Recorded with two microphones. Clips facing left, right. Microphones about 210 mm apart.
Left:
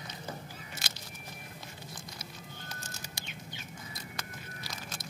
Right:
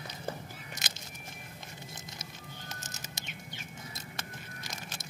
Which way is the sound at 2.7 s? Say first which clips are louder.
Even; 20° right (ahead or behind).